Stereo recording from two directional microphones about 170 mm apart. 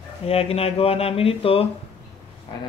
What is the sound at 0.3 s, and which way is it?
Speech, 35° left (ahead or behind).